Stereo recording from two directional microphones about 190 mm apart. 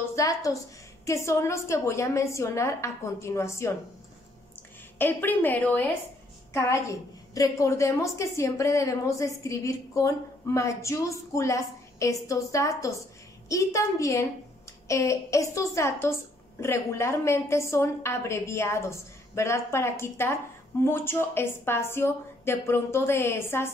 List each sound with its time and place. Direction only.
0.1 s a woman's voice: 20° left (ahead or behind)
4.9 s a woman's voice: 10° left (ahead or behind)